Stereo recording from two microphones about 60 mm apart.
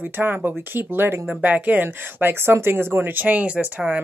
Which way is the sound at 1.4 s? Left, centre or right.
Right.